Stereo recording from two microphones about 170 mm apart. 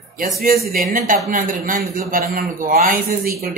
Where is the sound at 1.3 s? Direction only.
55° right (ahead or behind).